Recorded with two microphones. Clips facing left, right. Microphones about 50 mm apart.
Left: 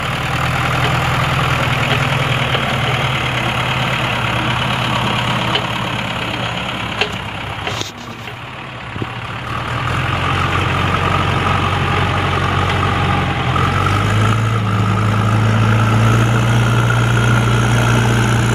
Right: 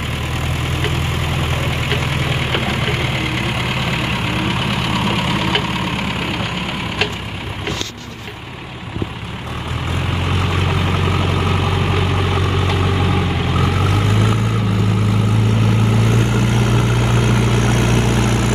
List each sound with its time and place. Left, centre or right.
0.3 s vehicle: left
10.1 s vehicle: left
12.4 s vehicle: left
15.4 s vehicle: left